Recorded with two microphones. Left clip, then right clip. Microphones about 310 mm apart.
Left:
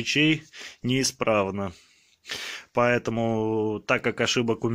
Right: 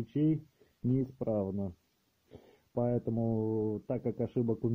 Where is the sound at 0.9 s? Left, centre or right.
Left.